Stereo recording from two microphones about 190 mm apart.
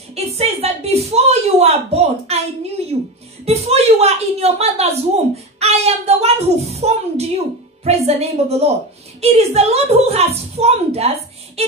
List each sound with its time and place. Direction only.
0.1 s speech: 35° right (ahead or behind)
2.8 s music: 30° right (ahead or behind)
3.4 s a woman's voice: 30° right (ahead or behind)